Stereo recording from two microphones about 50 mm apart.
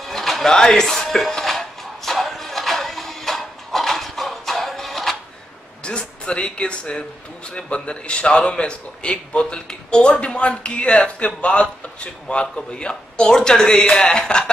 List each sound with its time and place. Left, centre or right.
0.0 s a sound: centre
0.5 s music: centre
5.9 s speech: centre